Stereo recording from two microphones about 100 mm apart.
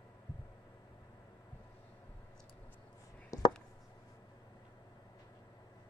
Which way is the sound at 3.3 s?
35° left (ahead or behind).